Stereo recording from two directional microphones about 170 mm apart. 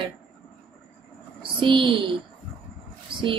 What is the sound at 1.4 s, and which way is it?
Speech, 30° right (ahead or behind).